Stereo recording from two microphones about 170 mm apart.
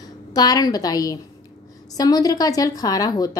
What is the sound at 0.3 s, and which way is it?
A woman's voice, 20° left (ahead or behind).